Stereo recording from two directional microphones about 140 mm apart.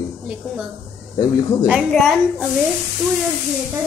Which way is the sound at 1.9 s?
Centre (ahead or behind).